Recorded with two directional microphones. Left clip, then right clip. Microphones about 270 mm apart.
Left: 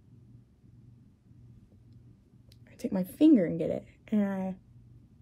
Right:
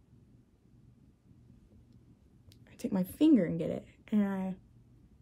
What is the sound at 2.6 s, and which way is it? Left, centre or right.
A woman's voice, centre.